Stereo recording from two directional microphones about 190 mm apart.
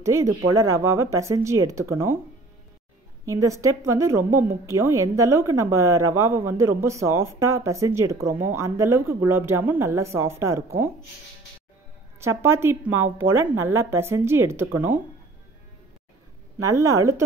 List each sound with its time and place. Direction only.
0.0 s a woman's voice: 15° right (ahead or behind)
0.7 s speech: 90° right
0.9 s a woman's voice: 15° right (ahead or behind)
3.3 s a woman's voice: 15° right (ahead or behind)
12.2 s a woman's voice: 15° right (ahead or behind)
16.5 s a woman's voice: 15° right (ahead or behind)